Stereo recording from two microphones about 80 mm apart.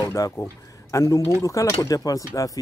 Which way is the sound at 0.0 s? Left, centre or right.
Left.